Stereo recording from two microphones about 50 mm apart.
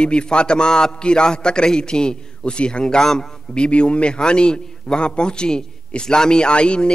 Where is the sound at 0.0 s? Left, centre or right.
Centre.